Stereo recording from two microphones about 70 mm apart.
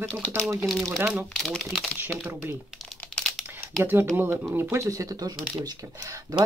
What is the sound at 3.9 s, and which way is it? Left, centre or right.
Speech, right.